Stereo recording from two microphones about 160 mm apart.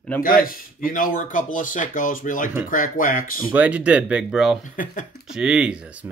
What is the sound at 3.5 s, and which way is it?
Speech, 10° right (ahead or behind).